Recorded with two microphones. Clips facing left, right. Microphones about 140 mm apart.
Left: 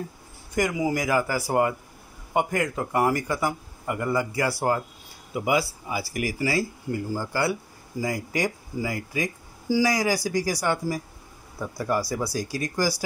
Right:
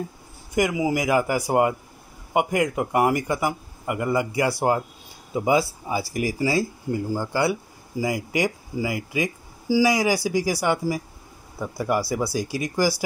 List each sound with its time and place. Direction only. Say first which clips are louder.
0.6 s speech: right 2 dB; 5° right (ahead or behind)